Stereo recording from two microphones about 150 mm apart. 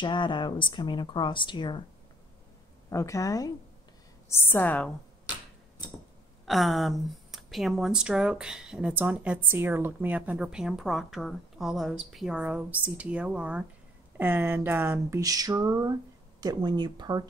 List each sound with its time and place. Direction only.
0.0 s speech: 30° left (ahead or behind)
2.9 s a woman's voice: 20° left (ahead or behind)
6.4 s speech: centre (ahead or behind); by 17.2 s 30° right (ahead or behind)